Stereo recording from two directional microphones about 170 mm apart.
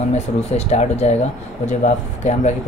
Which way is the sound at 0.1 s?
40° left (ahead or behind).